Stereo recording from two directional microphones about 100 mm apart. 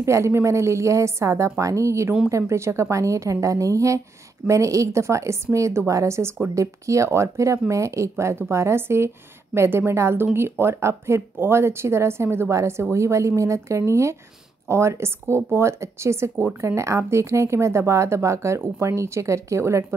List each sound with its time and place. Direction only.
0.0 s a woman's voice: 25° right (ahead or behind)